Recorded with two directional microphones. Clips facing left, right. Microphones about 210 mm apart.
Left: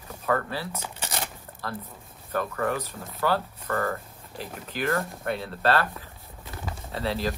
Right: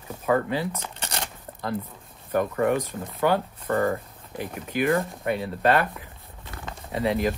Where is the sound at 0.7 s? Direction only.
5° left (ahead or behind).